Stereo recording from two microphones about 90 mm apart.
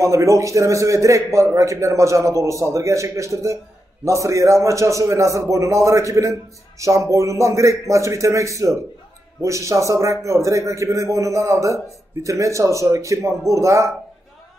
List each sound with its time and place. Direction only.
0.0 s a man's voice: 35° right (ahead or behind)